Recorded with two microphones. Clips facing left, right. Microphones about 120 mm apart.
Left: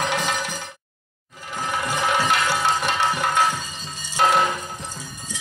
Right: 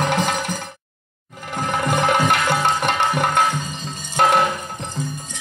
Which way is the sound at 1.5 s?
55° right (ahead or behind).